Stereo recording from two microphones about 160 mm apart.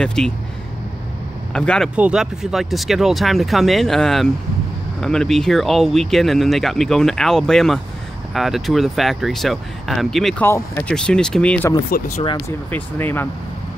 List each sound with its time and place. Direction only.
0.0 s speech: 5° left (ahead or behind)
1.5 s speech: 5° left (ahead or behind)
2.0 s speech: 5° right (ahead or behind)
10.4 s speech: 15° left (ahead or behind)
11.9 s speech: 65° left (ahead or behind)
12.4 s speech: 15° left (ahead or behind)